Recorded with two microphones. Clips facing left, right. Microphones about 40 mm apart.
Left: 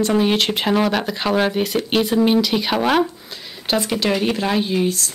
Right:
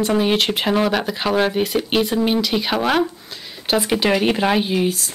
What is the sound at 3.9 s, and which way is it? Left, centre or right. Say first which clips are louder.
Speech: right 4 dB; right.